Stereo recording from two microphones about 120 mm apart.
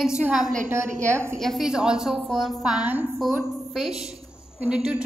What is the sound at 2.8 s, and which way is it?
Speech, 15° right (ahead or behind).